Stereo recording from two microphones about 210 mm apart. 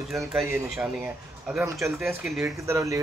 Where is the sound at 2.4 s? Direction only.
15° right (ahead or behind).